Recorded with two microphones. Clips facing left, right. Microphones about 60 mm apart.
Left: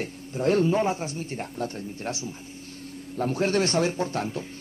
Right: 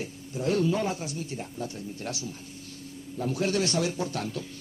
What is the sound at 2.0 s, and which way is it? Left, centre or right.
Speech, left.